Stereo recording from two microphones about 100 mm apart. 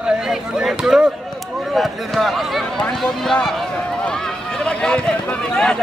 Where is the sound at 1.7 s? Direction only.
Centre (ahead or behind).